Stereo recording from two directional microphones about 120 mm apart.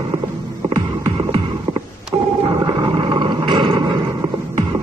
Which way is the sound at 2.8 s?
45° right (ahead or behind).